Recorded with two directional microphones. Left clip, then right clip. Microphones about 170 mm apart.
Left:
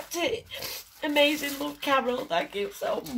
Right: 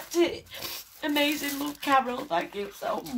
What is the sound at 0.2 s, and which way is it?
Speech, 10° left (ahead or behind).